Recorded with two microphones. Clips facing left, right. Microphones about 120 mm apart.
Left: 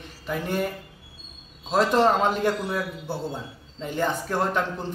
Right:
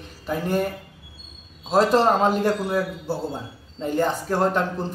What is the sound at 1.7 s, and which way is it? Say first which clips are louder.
A man's voice: right 2 dB; 35° right (ahead or behind).